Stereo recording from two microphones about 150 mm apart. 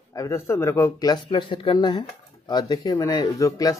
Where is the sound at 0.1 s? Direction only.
20° left (ahead or behind).